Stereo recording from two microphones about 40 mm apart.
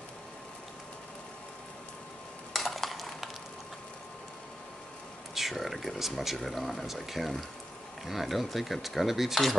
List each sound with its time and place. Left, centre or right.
2.5 s coin: centre
5.3 s speech: centre